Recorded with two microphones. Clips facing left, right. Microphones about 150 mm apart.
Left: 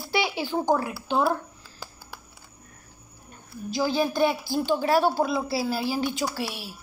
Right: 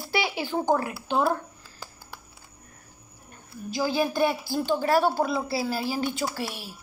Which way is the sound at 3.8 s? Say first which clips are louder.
Left 1 dB; 10° right (ahead or behind).